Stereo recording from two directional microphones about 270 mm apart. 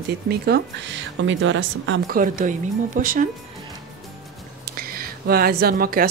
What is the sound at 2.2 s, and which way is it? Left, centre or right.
Speech, right.